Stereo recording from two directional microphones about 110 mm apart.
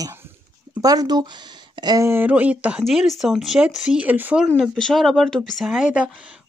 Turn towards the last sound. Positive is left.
turn(degrees=-10)  # may be behind; listen again after turning